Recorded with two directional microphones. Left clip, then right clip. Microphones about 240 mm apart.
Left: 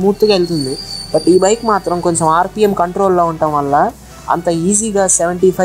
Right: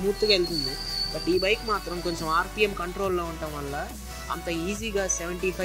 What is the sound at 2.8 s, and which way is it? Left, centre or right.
A woman's voice, centre.